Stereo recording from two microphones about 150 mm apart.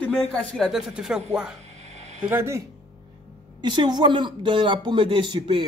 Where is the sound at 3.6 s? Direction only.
30° right (ahead or behind).